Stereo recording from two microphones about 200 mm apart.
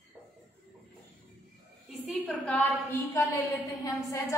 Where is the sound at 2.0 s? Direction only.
5° left (ahead or behind).